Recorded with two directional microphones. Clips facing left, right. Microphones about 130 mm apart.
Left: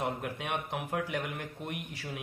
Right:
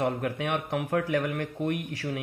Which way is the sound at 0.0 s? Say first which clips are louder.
Right 6 dB; 65° right (ahead or behind).